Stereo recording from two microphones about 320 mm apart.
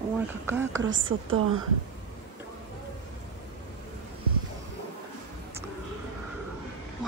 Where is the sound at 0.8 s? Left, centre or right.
Right.